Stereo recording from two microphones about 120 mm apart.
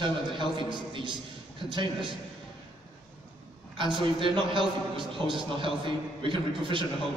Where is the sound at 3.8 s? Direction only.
45° right (ahead or behind).